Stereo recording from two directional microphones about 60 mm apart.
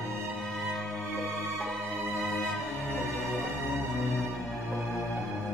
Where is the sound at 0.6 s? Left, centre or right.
Centre.